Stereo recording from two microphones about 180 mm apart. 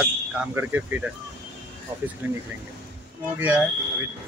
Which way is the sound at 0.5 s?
10° right (ahead or behind).